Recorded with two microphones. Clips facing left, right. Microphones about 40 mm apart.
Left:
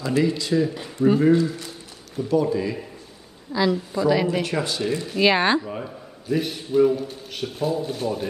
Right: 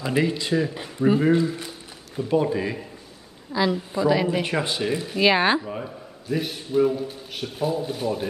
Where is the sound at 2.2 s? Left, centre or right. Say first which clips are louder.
Left 1 dB; right.